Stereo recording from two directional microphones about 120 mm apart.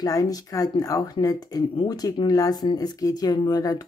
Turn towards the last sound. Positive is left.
turn(degrees=35)  # may be behind; listen again after turning